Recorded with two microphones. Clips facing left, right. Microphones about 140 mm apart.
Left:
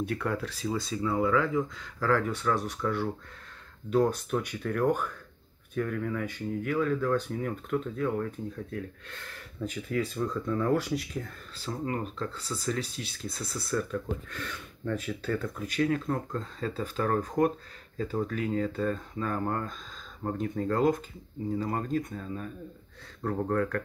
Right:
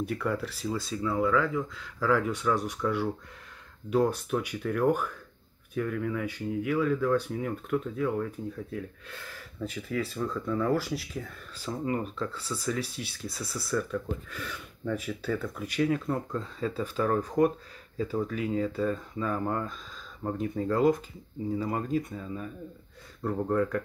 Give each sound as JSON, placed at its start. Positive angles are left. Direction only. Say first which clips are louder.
{"t": 0.0, "sound": "speech", "louder": "right 1 dB", "side_deg": -5}
{"t": 1.8, "sound": "speech", "louder": "right 1 dB", "side_deg": -10}